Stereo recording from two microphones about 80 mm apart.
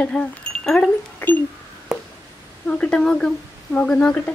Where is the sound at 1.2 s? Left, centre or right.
Left.